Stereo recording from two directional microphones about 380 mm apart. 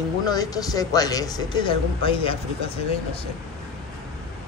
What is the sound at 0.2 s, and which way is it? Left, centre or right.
Speech, centre.